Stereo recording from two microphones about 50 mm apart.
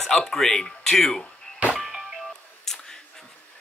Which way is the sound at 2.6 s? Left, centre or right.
Centre.